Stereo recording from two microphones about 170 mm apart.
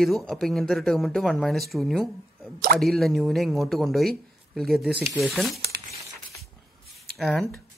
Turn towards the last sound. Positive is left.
turn(degrees=0)  # may be behind; listen again after turning